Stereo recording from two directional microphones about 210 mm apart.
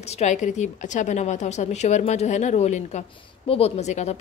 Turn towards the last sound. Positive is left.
turn(degrees=30)  # may be behind; listen again after turning